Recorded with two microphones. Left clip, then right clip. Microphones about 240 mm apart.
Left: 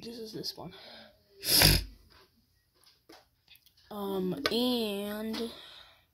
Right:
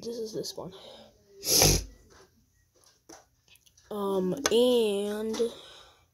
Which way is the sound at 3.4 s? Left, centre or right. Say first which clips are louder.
Right 7 dB; left.